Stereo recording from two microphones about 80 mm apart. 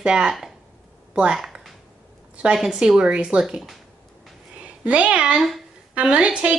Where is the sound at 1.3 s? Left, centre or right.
Centre.